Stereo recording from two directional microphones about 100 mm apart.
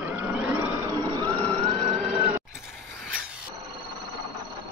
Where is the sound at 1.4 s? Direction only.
80° right.